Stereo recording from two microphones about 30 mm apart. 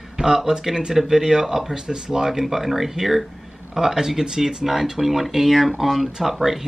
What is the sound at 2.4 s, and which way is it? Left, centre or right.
Speech, centre.